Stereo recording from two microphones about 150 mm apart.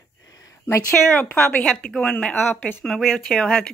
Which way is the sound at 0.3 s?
20° left (ahead or behind).